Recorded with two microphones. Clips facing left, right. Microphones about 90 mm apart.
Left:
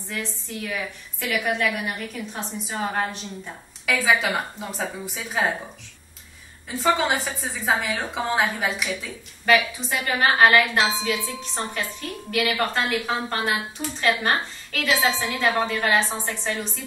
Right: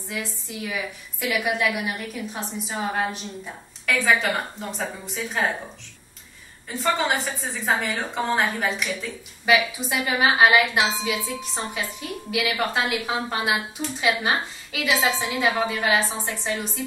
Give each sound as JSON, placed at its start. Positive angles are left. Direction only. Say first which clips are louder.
{"t": 0.1, "sound": "a woman's voice", "louder": "even", "side_deg": -5}
{"t": 6.7, "sound": "a woman's voice", "louder": "left 2 dB", "side_deg": 0}